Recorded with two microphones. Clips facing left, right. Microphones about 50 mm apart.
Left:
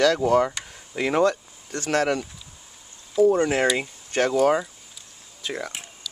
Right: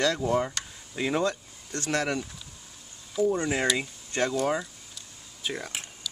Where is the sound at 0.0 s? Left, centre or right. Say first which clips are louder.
Left 7 dB; left.